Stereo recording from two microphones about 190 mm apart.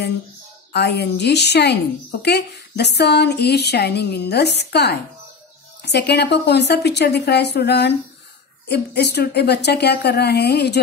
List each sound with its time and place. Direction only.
0.7 s speech: 60° left (ahead or behind)